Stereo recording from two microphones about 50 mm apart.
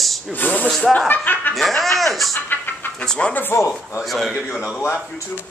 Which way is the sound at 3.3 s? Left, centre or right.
Left.